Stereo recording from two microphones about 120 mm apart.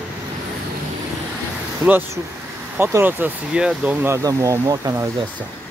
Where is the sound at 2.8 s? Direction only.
20° right (ahead or behind).